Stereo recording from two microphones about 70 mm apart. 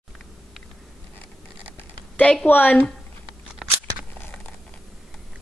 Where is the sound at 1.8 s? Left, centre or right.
Left.